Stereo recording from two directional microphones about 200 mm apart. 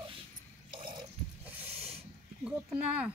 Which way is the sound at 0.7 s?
25° right (ahead or behind).